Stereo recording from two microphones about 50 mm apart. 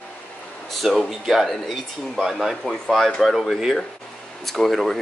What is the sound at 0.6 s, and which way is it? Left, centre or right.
Speech, centre.